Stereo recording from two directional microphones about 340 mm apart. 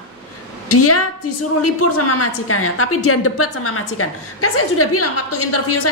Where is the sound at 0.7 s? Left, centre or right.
Left.